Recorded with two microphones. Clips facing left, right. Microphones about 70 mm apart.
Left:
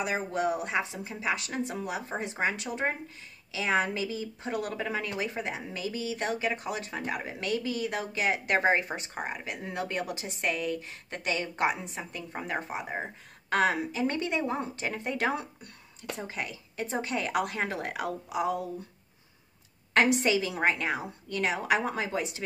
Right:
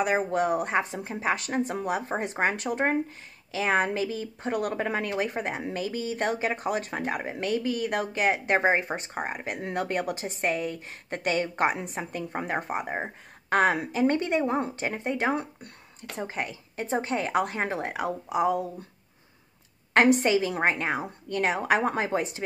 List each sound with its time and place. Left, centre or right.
0.0 s speech: right
8.5 s speech: right
8.9 s a woman's voice: right
12.9 s a woman's voice: right
15.0 s speech: right
16.2 s a woman's voice: right
18.3 s a woman's voice: right
19.9 s a woman's voice: right